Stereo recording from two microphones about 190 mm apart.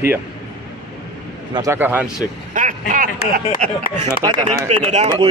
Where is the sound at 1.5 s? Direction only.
15° right (ahead or behind).